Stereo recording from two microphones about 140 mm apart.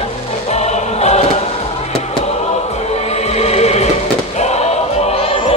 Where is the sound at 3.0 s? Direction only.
50° left (ahead or behind).